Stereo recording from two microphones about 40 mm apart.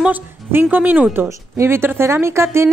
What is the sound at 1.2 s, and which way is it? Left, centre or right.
A woman's voice, right.